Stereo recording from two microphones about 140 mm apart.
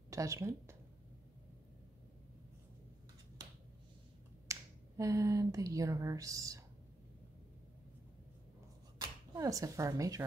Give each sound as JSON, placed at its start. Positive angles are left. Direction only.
{"t": 0.1, "sound": "speech", "side_deg": -20}
{"t": 4.5, "sound": "speech", "side_deg": -25}
{"t": 8.9, "sound": "speech", "side_deg": -25}